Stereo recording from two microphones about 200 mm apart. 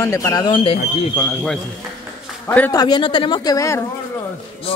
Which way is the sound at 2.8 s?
25° left (ahead or behind).